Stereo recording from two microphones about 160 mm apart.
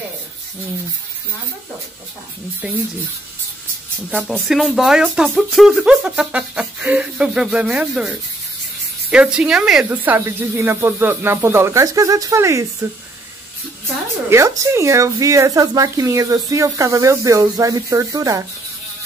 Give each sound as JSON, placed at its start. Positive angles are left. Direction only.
{"t": 2.6, "sound": "speech", "side_deg": -5}
{"t": 4.1, "sound": "speech", "side_deg": 5}
{"t": 14.3, "sound": "speech", "side_deg": -20}